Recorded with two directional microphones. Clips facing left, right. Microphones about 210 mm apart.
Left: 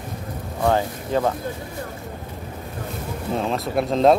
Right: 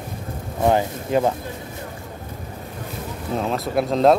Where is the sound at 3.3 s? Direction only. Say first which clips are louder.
Right 1 dB; centre (ahead or behind).